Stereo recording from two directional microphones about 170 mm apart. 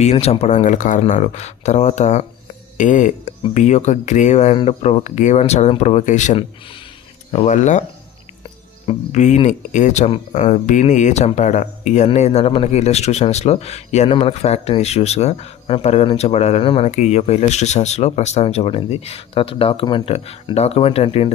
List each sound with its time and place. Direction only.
0.0 s speech: 40° left (ahead or behind)
8.8 s speech: 45° left (ahead or behind)